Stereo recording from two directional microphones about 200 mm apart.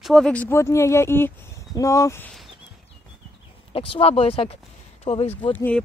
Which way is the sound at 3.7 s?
25° left (ahead or behind).